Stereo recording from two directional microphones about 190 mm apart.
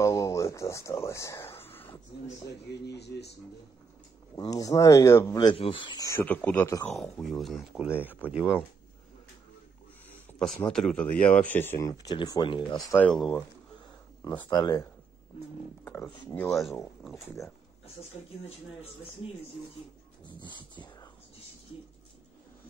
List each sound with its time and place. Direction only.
0.0 s a sound: 15° left (ahead or behind)
2.7 s speech: 60° left (ahead or behind)
4.4 s speech: 20° left (ahead or behind); by 8.5 s 5° right (ahead or behind)
10.0 s speech: 5° left (ahead or behind); by 12.8 s 25° left (ahead or behind)
12.9 s speech: 5° left (ahead or behind)
14.2 s speech: 20° left (ahead or behind)
16.5 s speech: centre (ahead or behind)
20.3 s speech: 25° left (ahead or behind)